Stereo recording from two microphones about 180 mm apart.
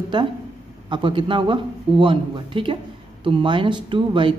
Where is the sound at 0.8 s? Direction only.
25° right (ahead or behind).